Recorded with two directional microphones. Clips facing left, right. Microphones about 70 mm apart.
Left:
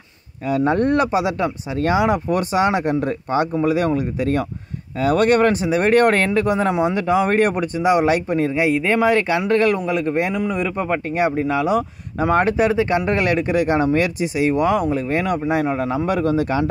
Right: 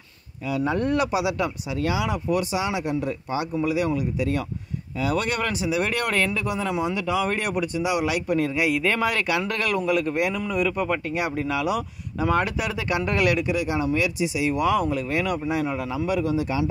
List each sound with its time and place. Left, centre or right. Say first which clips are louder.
0.5 s a man's voice: left 6 dB; left